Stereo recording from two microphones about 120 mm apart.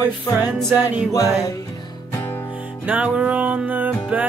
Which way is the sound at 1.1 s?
30° left (ahead or behind).